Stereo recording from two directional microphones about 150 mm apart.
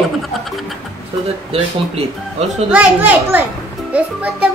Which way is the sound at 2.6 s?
10° right (ahead or behind).